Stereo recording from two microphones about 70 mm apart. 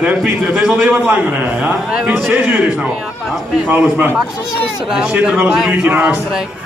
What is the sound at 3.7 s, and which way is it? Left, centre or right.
Speech, right.